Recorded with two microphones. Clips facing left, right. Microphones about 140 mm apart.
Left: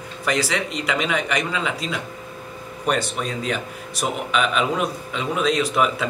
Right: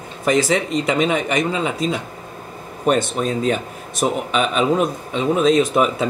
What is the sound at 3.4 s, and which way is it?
Speech, 40° right (ahead or behind).